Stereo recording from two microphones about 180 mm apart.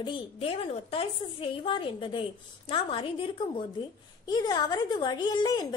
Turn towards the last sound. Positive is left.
turn(degrees=20)  # may be behind; listen again after turning